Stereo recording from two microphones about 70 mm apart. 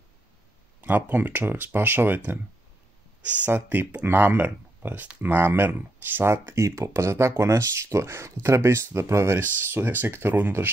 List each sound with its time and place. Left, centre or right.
0.7 s speech: right
3.4 s speech: right
6.3 s speech: right